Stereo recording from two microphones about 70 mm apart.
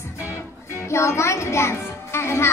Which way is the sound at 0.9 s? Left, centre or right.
Left.